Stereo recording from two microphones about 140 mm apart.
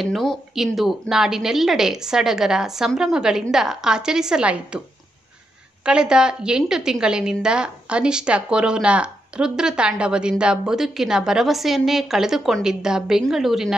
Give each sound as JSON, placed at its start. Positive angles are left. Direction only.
{"t": 0.0, "sound": "a woman's voice", "side_deg": 0}
{"t": 5.9, "sound": "a woman's voice", "side_deg": -5}